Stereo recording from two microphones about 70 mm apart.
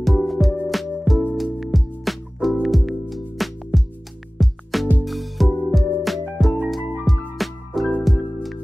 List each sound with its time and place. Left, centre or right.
0.0 s music: centre